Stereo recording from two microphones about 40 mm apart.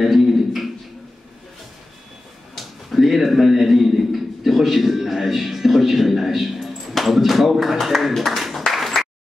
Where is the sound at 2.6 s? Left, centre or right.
Centre.